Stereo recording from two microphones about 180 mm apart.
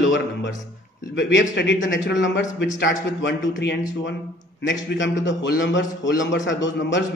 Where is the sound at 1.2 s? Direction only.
75° left (ahead or behind); by 7.0 s 90° left.